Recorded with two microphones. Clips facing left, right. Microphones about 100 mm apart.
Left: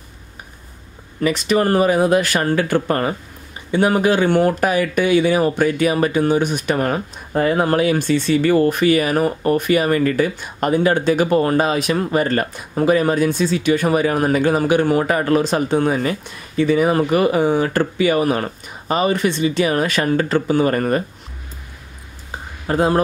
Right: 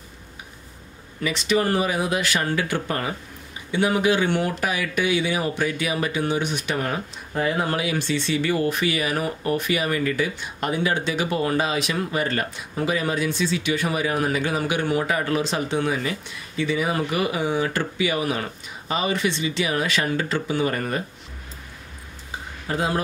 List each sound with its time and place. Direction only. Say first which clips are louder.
1.2 s speech: left 5 dB; 45° left (ahead or behind)
22.7 s speech: left 8 dB; 45° left (ahead or behind)